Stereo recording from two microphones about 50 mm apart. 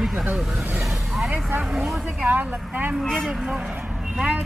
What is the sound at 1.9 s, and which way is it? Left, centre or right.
A man's voice, centre.